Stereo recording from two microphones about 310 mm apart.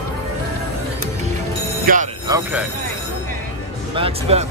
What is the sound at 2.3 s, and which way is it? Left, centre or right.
Speech, centre.